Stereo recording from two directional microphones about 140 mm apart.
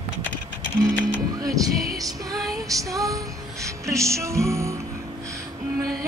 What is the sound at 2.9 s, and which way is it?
Female singing, 25° right (ahead or behind).